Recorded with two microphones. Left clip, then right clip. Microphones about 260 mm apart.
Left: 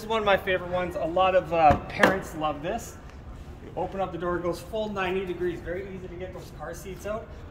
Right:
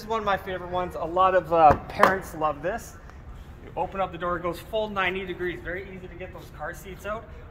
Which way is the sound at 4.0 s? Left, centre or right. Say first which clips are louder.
Right 1 dB; centre.